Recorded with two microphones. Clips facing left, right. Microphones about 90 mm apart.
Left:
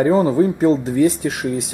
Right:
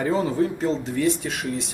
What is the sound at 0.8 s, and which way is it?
Speech, 5° left (ahead or behind).